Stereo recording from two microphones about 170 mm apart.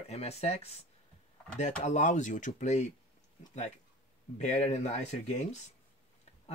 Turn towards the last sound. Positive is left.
turn(degrees=45)  # may be behind; listen again after turning